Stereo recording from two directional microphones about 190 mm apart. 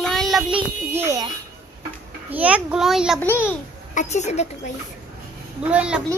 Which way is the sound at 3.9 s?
40° left (ahead or behind).